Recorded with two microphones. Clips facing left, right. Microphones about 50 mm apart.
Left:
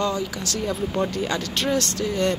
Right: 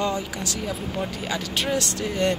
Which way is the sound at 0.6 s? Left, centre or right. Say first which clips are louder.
Left 7 dB; centre.